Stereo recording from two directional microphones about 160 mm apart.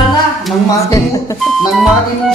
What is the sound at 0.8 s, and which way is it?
Speech, 20° left (ahead or behind).